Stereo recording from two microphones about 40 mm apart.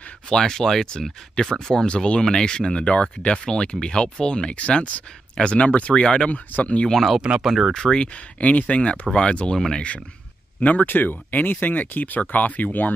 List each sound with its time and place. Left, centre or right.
0.3 s speech: centre
4.6 s speech: left
6.0 s speech: left
6.3 s speech: left
6.9 s speech: centre
7.2 s speech: right
7.4 s speech: centre
7.7 s speech: centre
8.1 s speech: left
10.6 s speech: left